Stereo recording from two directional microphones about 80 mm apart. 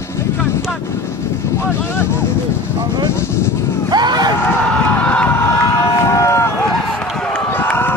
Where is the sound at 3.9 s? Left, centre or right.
Right.